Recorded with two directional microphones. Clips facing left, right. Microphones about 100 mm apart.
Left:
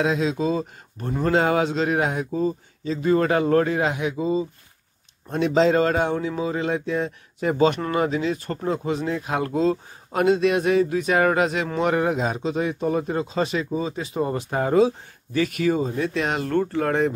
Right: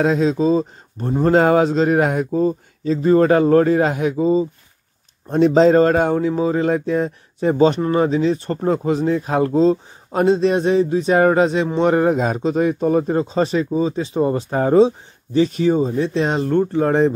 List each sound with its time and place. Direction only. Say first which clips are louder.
0.0 s speech: right 6 dB; 40° right (ahead or behind)
7.4 s speech: right 5 dB; 30° right (ahead or behind)
16.4 s speech: right 5 dB; 20° right (ahead or behind)